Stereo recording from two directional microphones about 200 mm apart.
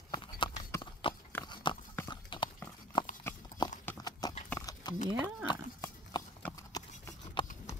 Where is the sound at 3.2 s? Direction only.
15° left (ahead or behind).